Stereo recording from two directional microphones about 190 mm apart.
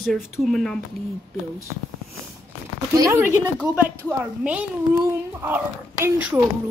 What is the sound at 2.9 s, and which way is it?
Speech, 15° right (ahead or behind).